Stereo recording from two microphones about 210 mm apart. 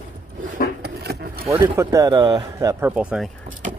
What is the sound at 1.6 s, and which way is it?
Speech, 15° right (ahead or behind).